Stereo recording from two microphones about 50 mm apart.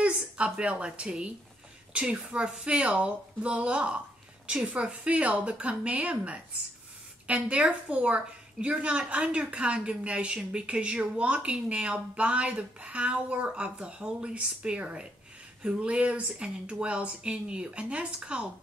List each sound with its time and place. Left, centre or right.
0.0 s a woman's voice: right